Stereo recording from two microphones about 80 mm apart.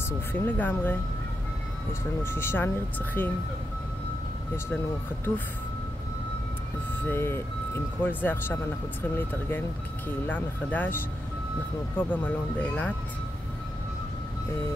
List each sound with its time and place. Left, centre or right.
0.3 s speech: left
2.2 s speech: left
7.1 s speech: left
12.0 s speech: left